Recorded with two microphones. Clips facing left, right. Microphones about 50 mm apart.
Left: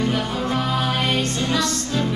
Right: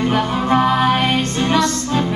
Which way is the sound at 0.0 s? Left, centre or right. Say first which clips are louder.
Right 5 dB; right.